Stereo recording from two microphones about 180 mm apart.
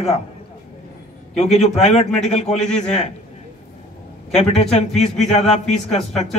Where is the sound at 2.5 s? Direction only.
5° left (ahead or behind).